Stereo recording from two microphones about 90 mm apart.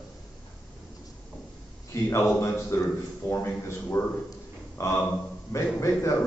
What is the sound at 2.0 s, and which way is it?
A man's voice, 30° left (ahead or behind).